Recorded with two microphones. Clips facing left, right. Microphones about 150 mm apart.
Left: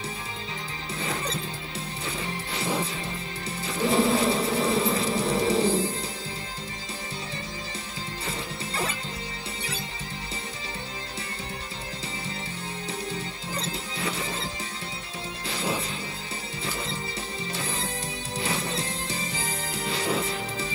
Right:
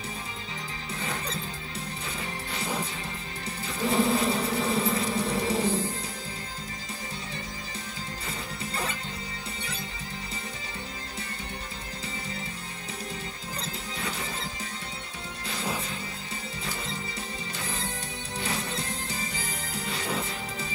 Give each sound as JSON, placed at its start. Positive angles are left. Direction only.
{"t": 3.6, "sound": "music", "side_deg": 30}
{"t": 8.3, "sound": "music", "side_deg": 30}
{"t": 13.6, "sound": "music", "side_deg": 30}
{"t": 18.4, "sound": "music", "side_deg": 30}